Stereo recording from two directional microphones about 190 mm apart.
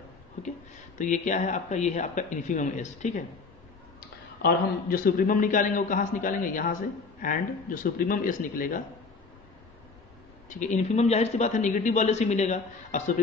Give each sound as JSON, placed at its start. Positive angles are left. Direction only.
{"t": 0.9, "sound": "a man's voice", "side_deg": 40}
{"t": 4.4, "sound": "a man's voice", "side_deg": 50}
{"t": 10.6, "sound": "a man's voice", "side_deg": 40}